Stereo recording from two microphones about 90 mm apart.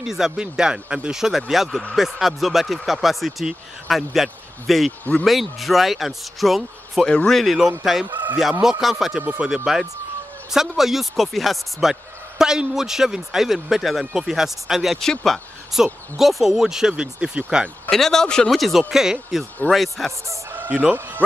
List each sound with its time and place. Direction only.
0.0 s a man's voice: 5° right (ahead or behind)
9.2 s speech: 20° right (ahead or behind)
9.7 s a man's voice: 5° right (ahead or behind)
17.8 s a man's voice: 5° left (ahead or behind)
20.5 s chicken: 15° right (ahead or behind)